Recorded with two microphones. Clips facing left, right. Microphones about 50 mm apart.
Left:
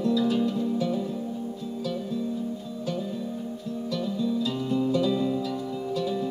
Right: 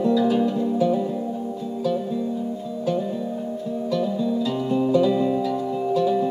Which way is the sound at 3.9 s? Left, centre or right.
Centre.